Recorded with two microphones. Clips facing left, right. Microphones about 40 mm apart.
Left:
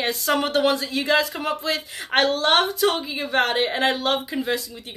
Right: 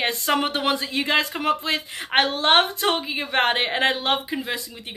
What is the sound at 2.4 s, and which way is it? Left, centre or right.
A woman's voice, right.